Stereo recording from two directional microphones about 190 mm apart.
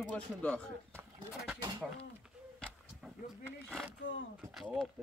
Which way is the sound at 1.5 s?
20° right (ahead or behind).